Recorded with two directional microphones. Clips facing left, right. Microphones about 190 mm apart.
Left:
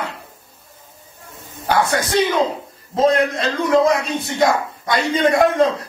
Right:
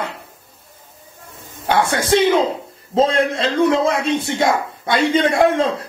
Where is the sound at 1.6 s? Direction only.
25° right (ahead or behind).